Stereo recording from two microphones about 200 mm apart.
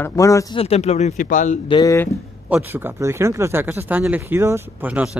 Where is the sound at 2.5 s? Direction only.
10° right (ahead or behind).